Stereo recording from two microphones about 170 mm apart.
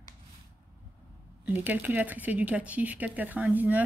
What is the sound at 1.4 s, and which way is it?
Speech, 10° right (ahead or behind).